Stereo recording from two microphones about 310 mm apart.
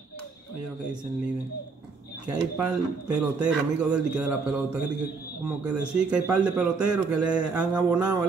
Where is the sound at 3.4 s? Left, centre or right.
Centre.